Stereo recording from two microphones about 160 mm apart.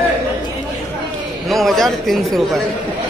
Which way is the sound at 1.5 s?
Centre (ahead or behind).